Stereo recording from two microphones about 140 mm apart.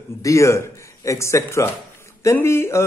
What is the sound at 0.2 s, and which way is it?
A man's voice, 20° left (ahead or behind).